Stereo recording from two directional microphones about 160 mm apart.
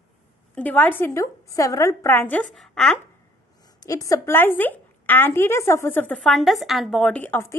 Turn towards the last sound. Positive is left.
turn(degrees=15)  # may be behind; listen again after turning